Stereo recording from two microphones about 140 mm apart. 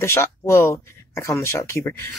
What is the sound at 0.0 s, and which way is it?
Speech, 20° left (ahead or behind).